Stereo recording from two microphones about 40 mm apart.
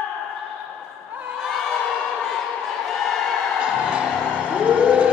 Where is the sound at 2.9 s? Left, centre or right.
Centre.